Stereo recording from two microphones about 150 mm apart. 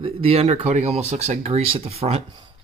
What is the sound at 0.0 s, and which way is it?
Speech, 40° right (ahead or behind).